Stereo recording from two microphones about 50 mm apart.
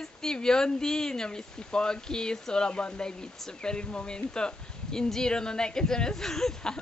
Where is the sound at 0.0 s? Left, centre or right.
Centre.